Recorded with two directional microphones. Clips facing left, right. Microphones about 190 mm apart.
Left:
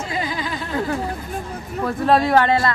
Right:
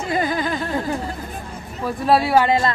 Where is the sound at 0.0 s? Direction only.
50° right (ahead or behind).